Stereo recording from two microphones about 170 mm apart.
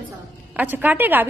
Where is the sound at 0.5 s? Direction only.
10° right (ahead or behind).